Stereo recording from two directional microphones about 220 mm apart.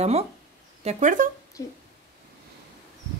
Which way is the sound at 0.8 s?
35° right (ahead or behind).